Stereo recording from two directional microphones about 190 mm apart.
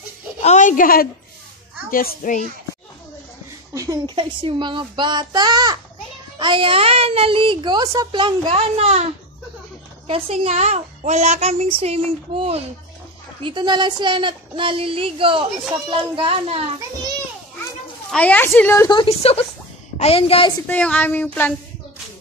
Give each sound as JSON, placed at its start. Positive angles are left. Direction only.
{"t": 0.4, "sound": "a woman's voice", "side_deg": 40}
{"t": 3.7, "sound": "a child's voice", "side_deg": -20}
{"t": 10.0, "sound": "a woman's voice", "side_deg": -30}
{"t": 18.1, "sound": "speech", "side_deg": 10}
{"t": 18.9, "sound": "a woman's voice", "side_deg": 30}
{"t": 20.6, "sound": "speech", "side_deg": 10}